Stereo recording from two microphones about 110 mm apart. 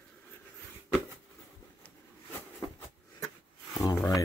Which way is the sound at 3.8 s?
35° left (ahead or behind).